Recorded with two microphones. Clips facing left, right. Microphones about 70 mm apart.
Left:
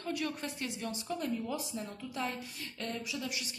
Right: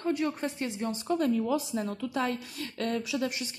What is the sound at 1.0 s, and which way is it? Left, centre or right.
A woman's voice, right.